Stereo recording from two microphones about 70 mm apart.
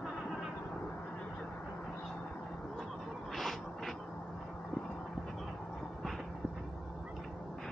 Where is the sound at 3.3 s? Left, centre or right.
Centre.